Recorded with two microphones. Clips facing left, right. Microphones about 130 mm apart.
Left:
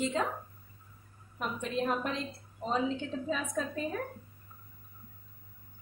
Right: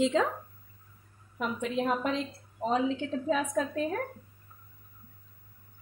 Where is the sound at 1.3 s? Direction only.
90° right.